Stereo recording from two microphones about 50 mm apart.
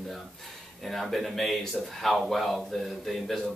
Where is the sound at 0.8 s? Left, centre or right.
Centre.